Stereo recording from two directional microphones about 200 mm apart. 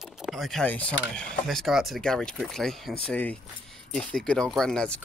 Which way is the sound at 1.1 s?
Centre (ahead or behind).